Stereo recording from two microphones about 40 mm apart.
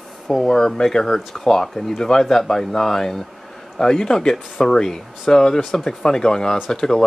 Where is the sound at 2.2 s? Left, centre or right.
Centre.